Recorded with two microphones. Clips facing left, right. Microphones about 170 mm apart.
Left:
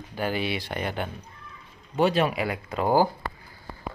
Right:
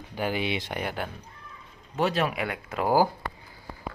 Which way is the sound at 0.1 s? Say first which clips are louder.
Even; 15° right (ahead or behind).